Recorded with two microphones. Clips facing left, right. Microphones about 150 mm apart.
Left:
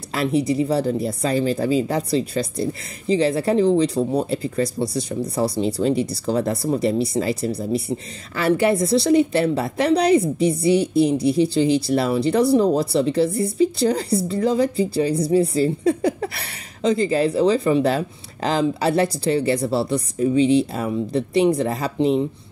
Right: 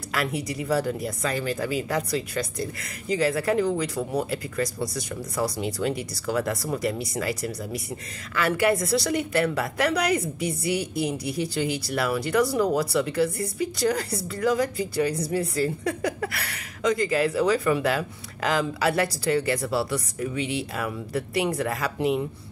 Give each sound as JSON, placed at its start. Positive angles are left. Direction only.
{"t": 0.1, "sound": "a woman's voice", "side_deg": 25}